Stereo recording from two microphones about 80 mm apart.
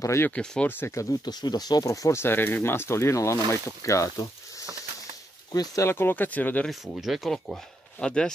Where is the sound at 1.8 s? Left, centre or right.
Left.